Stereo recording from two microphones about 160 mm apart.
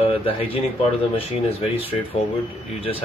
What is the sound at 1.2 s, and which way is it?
Speech, 40° left (ahead or behind).